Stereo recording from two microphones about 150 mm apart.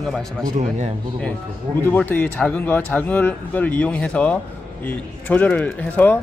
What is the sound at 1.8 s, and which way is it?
Speech, 10° left (ahead or behind).